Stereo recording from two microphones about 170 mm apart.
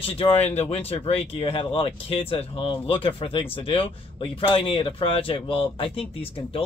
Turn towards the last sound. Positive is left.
turn(degrees=35)  # may be behind; listen again after turning